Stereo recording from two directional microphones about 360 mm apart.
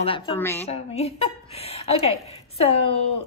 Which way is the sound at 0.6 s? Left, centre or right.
Centre.